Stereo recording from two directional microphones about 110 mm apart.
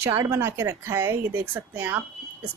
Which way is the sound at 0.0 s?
25° right (ahead or behind).